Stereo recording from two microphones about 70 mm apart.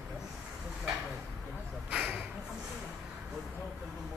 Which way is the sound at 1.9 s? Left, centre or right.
Centre.